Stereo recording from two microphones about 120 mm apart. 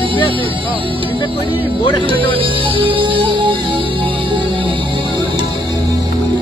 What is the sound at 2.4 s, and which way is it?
Music, 45° right (ahead or behind).